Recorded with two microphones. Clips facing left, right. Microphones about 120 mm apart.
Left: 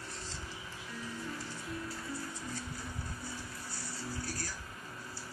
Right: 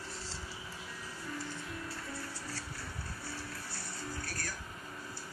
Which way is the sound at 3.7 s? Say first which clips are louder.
Even; 60° right (ahead or behind).